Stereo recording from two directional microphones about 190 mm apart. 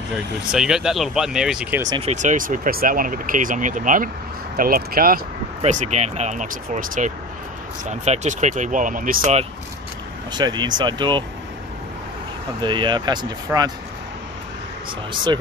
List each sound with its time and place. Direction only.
0.1 s speech: 5° right (ahead or behind)
2.0 s speech: 35° right (ahead or behind)
5.6 s speech: 40° right (ahead or behind)
10.3 s speech: 20° right (ahead or behind)
12.5 s speech: 25° right (ahead or behind)